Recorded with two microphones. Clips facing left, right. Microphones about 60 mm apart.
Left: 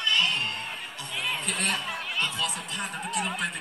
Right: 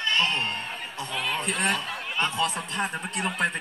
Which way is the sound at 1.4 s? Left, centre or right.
Right.